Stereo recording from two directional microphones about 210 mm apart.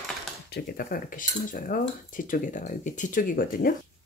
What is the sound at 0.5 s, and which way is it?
Speech, 45° left (ahead or behind).